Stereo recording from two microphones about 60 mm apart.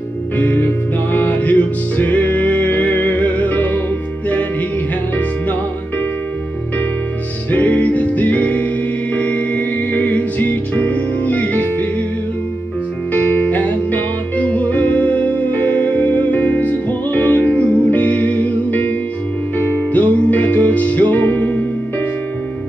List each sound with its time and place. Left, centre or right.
0.4 s music: left
7.5 s music: left
13.1 s music: left